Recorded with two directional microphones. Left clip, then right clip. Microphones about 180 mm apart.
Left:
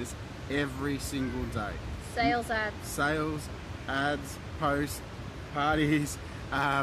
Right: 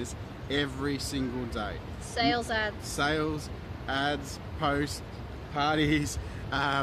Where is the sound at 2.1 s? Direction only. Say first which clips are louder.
Even; 20° right (ahead or behind).